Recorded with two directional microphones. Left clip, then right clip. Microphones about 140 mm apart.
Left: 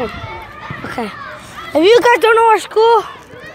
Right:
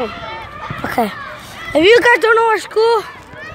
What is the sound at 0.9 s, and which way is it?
Children playing, 50° right (ahead or behind).